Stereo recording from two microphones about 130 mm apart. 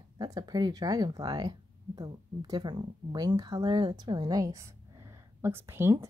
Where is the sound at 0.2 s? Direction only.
30° right (ahead or behind).